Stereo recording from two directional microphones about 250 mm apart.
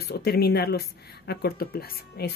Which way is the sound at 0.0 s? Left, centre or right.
Left.